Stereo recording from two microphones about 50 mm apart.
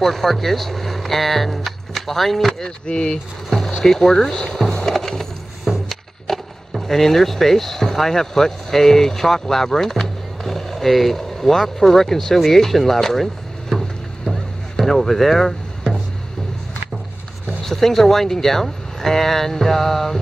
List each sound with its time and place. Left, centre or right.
0.0 s speech: centre
2.9 s speech: left
3.4 s speech: centre
4.5 s music: centre
5.9 s speech: centre
17.6 s speech: centre